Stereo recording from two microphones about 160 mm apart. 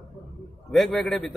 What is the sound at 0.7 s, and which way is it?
Speech, centre (ahead or behind).